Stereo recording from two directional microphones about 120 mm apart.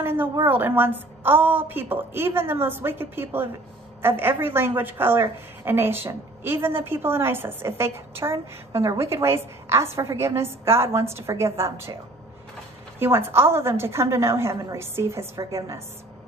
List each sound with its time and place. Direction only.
0.0 s a woman's voice: 15° right (ahead or behind)
13.0 s a woman's voice: 20° right (ahead or behind)